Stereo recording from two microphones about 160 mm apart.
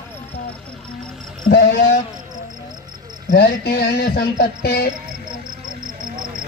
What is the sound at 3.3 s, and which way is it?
Speech, 90° left.